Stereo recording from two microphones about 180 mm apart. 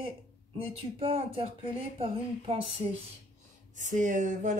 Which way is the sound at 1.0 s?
30° right (ahead or behind).